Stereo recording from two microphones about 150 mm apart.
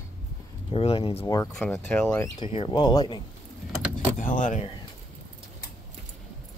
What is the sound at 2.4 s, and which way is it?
Speech, 35° left (ahead or behind).